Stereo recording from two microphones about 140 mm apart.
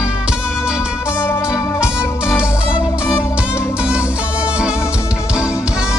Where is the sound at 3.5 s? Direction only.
10° right (ahead or behind).